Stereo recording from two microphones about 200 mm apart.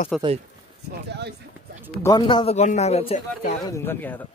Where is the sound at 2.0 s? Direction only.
20° left (ahead or behind).